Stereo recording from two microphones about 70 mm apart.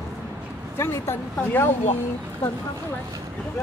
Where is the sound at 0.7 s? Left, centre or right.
Left.